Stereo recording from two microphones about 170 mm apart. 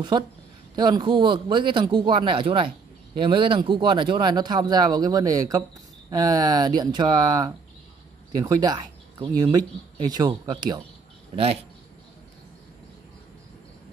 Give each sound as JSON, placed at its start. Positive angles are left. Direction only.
{"t": 0.1, "sound": "speech", "side_deg": -25}